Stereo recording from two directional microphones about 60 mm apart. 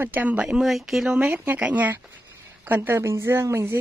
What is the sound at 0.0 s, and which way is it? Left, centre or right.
Speech, right.